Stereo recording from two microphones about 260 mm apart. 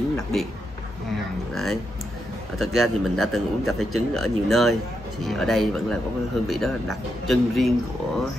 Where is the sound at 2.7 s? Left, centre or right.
Centre.